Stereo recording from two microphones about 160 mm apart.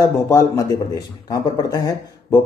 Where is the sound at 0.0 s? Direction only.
20° left (ahead or behind).